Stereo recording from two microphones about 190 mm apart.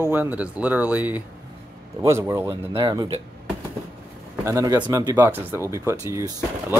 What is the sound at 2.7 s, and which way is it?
Speech, 25° right (ahead or behind).